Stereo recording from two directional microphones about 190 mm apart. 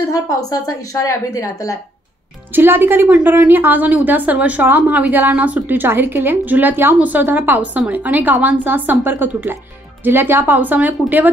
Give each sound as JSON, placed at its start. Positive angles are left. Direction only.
{"t": 0.1, "sound": "speech", "side_deg": 15}
{"t": 2.5, "sound": "a woman's voice", "side_deg": -10}